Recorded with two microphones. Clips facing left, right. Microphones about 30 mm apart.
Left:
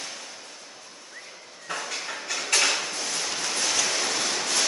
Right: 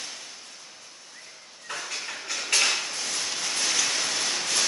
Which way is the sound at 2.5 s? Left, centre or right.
Centre.